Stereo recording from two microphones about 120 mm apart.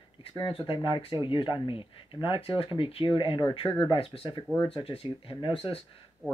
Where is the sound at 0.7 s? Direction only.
45° left (ahead or behind).